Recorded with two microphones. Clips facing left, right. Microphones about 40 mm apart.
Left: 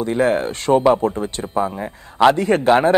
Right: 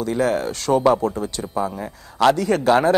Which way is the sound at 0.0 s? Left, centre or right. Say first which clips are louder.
Left 3 dB; left.